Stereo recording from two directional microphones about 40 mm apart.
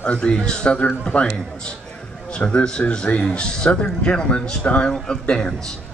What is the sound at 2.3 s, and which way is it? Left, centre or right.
A man's voice, left.